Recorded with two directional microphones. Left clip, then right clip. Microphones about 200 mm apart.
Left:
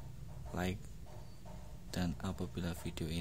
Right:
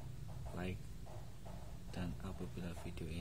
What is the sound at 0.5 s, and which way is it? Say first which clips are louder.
Speech: left 7 dB; 35° left (ahead or behind).